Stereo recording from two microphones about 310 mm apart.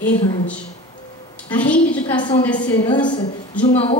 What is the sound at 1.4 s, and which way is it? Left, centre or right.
A woman's voice, centre.